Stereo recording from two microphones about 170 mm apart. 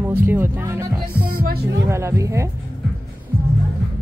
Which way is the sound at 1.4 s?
65° right (ahead or behind).